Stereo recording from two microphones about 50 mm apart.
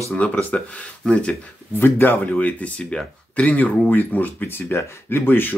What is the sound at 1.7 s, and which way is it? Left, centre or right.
Speech, left.